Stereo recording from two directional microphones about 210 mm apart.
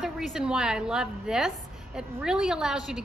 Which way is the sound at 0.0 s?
Centre (ahead or behind).